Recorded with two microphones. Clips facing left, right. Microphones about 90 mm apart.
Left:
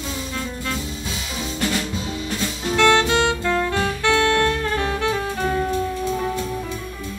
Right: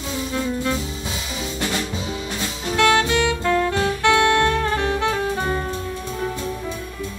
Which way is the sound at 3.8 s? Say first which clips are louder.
Right 2 dB; 20° right (ahead or behind).